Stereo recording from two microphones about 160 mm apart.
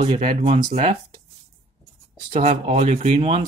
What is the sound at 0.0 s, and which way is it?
Speech, 45° right (ahead or behind).